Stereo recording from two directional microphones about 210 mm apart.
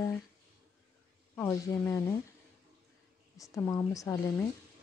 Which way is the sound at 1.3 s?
10° left (ahead or behind).